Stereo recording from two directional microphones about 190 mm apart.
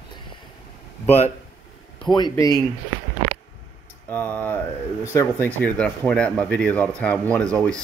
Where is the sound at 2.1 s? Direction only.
20° left (ahead or behind).